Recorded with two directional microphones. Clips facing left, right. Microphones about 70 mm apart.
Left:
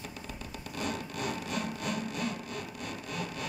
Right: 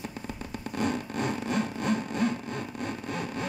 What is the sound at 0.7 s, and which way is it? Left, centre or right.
Whir, right.